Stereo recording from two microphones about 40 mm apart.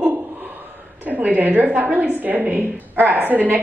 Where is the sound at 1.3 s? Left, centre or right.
Right.